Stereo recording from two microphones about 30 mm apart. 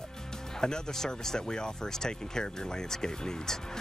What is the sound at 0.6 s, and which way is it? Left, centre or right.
Speech, left.